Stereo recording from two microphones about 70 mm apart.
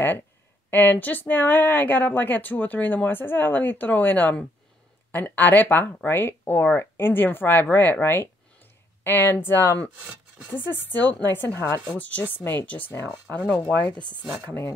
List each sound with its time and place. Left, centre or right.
0.7 s speech: left
12.0 s speech: left